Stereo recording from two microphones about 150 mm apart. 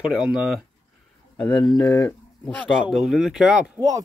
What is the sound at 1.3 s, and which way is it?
Speech, 10° left (ahead or behind).